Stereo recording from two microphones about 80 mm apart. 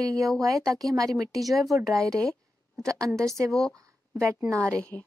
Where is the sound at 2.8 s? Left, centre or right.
Right.